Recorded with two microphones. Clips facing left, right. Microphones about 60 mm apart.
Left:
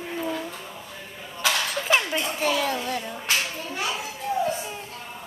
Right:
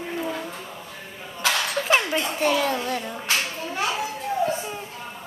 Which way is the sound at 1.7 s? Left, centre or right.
Centre.